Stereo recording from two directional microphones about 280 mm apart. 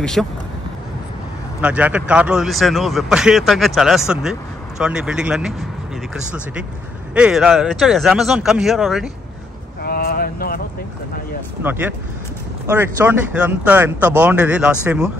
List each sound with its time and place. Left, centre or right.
0.0 s a man's voice: centre
1.6 s a man's voice: centre
9.8 s a sound: left
11.6 s a man's voice: centre